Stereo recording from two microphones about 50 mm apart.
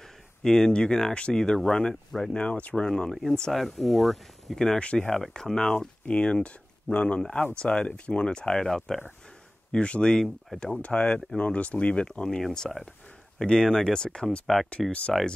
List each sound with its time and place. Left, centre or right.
0.4 s speech: centre
4.7 s speech: left
9.7 s speech: left; by 12.8 s centre
13.4 s speech: centre
14.4 s speech: centre
14.9 s speech: left